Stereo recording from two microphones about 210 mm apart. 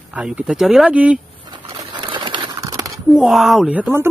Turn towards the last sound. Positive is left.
turn(degrees=-10)  # may be behind; listen again after turning